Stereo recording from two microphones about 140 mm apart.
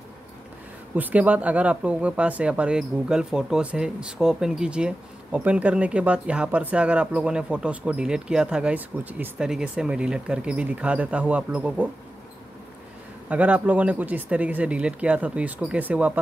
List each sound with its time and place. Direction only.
0.9 s speech: 10° right (ahead or behind)
13.3 s speech: 10° right (ahead or behind)